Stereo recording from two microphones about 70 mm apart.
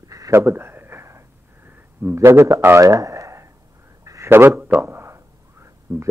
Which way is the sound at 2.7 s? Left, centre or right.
Right.